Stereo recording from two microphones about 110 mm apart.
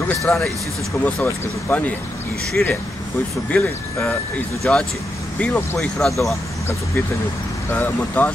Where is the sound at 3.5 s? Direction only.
5° left (ahead or behind).